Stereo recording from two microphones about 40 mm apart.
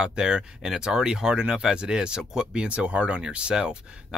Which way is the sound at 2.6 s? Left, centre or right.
Right.